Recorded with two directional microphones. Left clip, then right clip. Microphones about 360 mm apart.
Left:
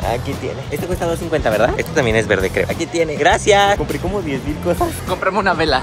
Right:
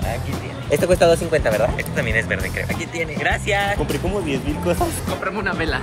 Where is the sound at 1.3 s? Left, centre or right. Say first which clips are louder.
Left 3 dB; centre.